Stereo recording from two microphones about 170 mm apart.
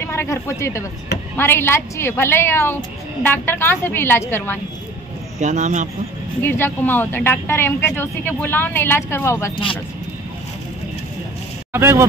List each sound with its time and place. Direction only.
0.0 s speech: 15° left (ahead or behind)
5.4 s a man's voice: 45° right (ahead or behind)
6.4 s speech: 15° left (ahead or behind)
11.7 s speech: 15° right (ahead or behind)